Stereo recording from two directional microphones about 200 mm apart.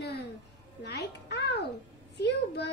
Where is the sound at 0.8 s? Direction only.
55° left (ahead or behind).